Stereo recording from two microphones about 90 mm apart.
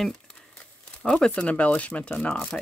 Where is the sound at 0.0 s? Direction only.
5° left (ahead or behind).